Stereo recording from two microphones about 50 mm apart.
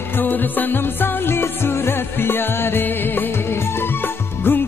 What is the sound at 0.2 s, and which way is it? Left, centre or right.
Music, left.